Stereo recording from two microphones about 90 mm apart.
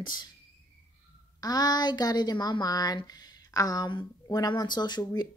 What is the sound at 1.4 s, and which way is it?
Speech, 50° left (ahead or behind).